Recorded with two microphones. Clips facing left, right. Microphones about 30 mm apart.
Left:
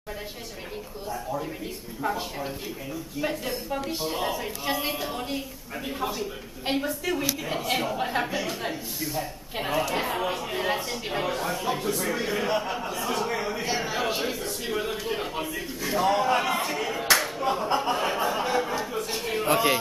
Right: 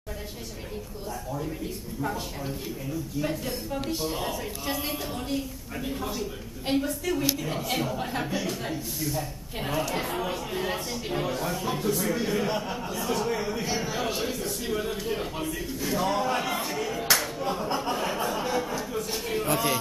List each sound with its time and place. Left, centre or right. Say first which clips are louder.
2.0 s a woman's voice: left 3 dB; centre